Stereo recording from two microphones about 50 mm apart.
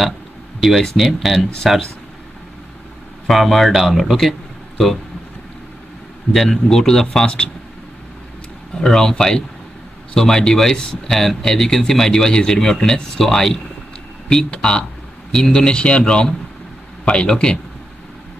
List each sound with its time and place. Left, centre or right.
0.6 s speech: centre
3.3 s speech: centre
6.3 s speech: centre
8.7 s speech: centre
10.1 s speech: centre
14.3 s a man's voice: centre